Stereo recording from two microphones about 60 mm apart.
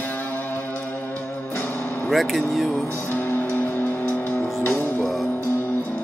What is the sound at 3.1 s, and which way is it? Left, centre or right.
Music, left.